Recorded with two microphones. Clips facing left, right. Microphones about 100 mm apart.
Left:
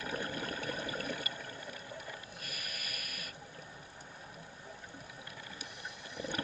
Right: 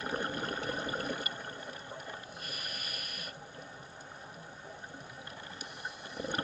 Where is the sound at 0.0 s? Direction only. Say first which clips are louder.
Right 3 dB; 35° right (ahead or behind).